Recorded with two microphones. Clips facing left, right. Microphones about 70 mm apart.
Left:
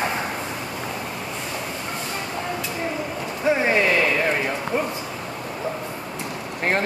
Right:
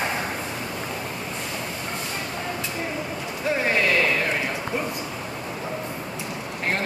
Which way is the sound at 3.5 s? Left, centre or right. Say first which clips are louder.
Left 2 dB; centre.